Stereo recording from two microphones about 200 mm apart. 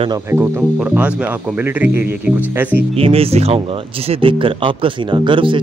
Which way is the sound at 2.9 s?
30° right (ahead or behind).